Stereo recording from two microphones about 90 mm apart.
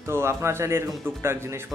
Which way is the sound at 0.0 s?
30° right (ahead or behind).